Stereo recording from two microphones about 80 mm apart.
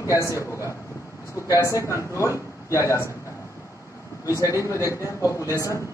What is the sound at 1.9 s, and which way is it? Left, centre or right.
A man's voice, left.